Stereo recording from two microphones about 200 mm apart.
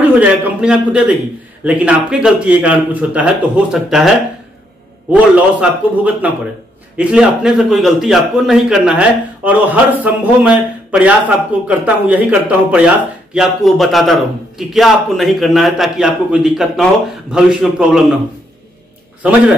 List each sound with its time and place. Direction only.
0.0 s a man's voice: 10° right (ahead or behind)
5.6 s a man's voice: 5° right (ahead or behind)
19.2 s speech: 5° right (ahead or behind)